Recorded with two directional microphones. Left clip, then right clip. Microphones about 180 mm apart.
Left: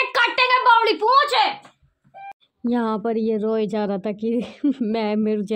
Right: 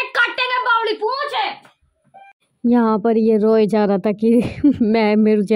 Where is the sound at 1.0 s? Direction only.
45° left (ahead or behind).